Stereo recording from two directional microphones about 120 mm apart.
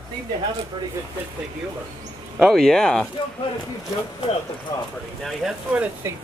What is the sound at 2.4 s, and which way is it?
Speech, 5° left (ahead or behind).